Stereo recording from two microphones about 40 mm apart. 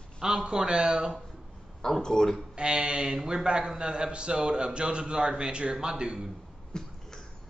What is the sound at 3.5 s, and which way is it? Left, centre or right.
A man's voice, right.